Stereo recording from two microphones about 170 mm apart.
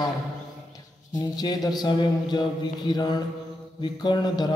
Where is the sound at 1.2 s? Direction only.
25° left (ahead or behind).